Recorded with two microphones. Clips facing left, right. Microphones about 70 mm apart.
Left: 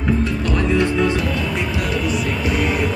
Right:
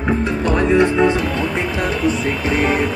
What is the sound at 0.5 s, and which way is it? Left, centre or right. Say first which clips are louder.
Music: right 5 dB; right.